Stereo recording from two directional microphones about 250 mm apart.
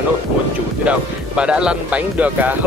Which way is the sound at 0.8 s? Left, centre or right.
Centre.